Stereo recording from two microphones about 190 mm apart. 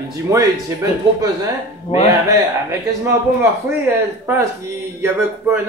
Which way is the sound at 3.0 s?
15° right (ahead or behind).